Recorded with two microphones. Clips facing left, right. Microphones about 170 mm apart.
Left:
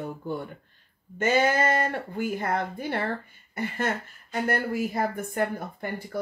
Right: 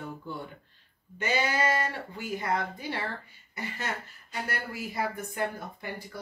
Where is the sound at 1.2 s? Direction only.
50° left (ahead or behind).